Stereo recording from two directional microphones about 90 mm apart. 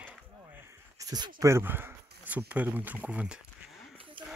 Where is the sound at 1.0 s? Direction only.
45° right (ahead or behind).